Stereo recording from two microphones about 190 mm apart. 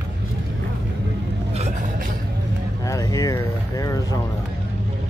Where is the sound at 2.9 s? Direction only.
20° left (ahead or behind).